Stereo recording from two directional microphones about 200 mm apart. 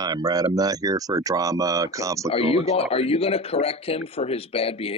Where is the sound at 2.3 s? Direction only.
30° left (ahead or behind).